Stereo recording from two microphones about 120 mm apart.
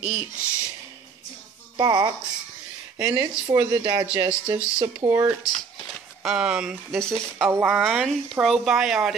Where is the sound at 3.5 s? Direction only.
30° right (ahead or behind).